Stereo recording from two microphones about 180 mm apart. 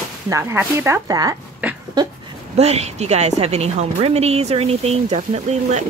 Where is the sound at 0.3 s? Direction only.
15° right (ahead or behind).